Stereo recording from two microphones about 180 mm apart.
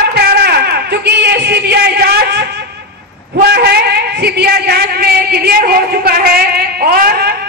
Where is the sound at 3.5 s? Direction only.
60° right (ahead or behind).